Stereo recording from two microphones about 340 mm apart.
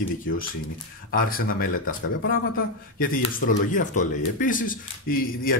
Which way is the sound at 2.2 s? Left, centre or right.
Left.